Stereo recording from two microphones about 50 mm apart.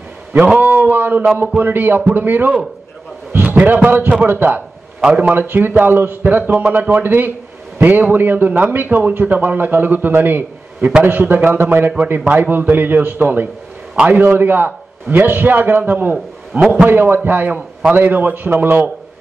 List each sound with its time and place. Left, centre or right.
0.3 s a man's voice: right
3.4 s a sound: right
3.7 s a man's voice: right
13.9 s a man's voice: right
14.2 s a man's voice: right